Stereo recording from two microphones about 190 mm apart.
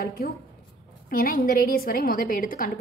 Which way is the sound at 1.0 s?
50° left (ahead or behind).